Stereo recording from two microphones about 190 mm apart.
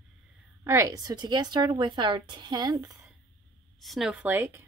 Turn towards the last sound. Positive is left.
turn(degrees=-10)  # may be behind; listen again after turning